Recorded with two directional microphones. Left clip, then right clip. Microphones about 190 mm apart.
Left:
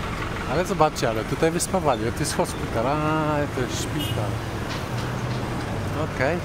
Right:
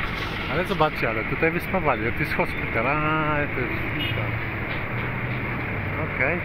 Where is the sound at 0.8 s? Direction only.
15° left (ahead or behind).